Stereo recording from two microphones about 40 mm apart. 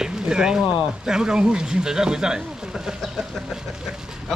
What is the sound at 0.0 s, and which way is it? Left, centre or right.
Speech, centre.